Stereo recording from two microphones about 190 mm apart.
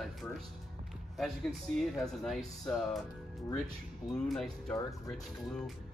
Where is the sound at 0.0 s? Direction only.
Centre (ahead or behind).